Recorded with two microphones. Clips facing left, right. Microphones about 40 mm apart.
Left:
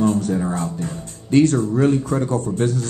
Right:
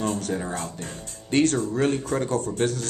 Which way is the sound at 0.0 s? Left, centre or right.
Right.